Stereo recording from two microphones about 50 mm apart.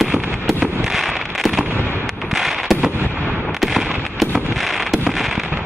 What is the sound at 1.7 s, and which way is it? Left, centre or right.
Fireworks, left.